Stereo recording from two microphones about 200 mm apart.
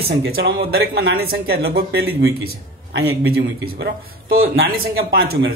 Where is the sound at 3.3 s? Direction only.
50° right (ahead or behind).